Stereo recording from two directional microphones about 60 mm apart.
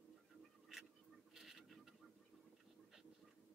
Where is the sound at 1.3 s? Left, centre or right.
Centre.